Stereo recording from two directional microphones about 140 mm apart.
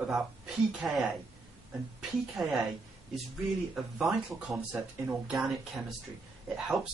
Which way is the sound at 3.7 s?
Centre (ahead or behind).